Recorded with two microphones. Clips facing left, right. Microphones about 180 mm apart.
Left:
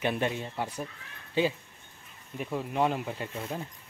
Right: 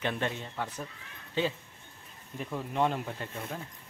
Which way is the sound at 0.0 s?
15° left (ahead or behind).